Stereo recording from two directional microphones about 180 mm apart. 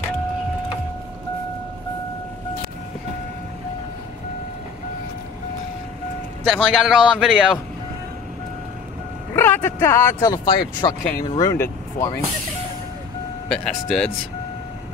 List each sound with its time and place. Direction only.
6.4 s a man's voice: 5° right (ahead or behind)
9.3 s speech: 10° left (ahead or behind)
13.5 s a man's voice: centre (ahead or behind)